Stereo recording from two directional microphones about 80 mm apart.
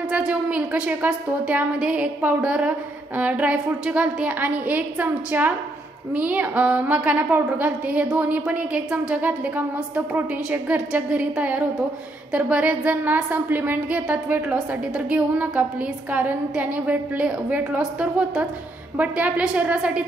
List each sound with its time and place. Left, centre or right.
0.1 s a woman's voice: centre